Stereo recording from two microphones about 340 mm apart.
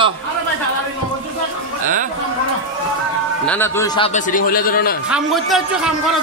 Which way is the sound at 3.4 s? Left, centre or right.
Centre.